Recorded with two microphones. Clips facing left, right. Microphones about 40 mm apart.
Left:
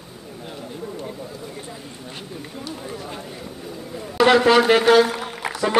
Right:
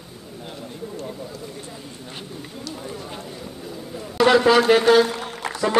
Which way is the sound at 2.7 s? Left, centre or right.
Centre.